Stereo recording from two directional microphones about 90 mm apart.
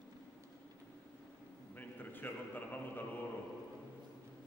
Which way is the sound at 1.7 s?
20° left (ahead or behind).